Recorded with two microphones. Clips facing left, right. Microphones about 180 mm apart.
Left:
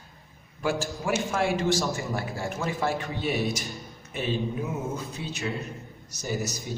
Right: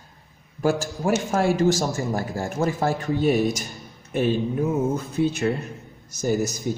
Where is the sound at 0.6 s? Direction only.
45° right (ahead or behind).